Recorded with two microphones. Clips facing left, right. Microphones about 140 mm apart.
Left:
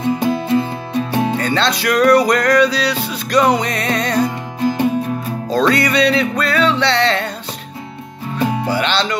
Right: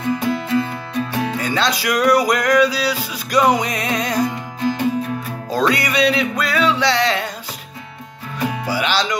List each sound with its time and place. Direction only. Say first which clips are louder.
0.0 s music: left 3 dB; 25° left (ahead or behind)
1.4 s music: left 3 dB; 10° right (ahead or behind)
5.5 s music: left 3 dB; 10° right (ahead or behind)
8.6 s music: left 2 dB; 10° right (ahead or behind)